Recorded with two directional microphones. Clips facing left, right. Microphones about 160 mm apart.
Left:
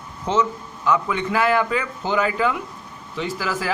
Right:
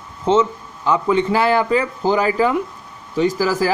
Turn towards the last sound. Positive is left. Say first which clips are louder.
# right 8 dB
turn(degrees=-35)  # may be behind; listen again after turning